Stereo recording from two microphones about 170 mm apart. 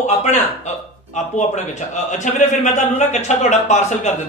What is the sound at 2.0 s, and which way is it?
A man's voice, 45° left (ahead or behind).